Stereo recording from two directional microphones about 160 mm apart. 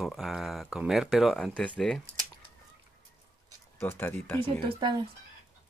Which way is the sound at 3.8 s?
15° left (ahead or behind).